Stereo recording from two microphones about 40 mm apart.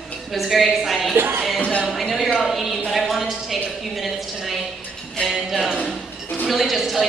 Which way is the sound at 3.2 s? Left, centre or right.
Centre.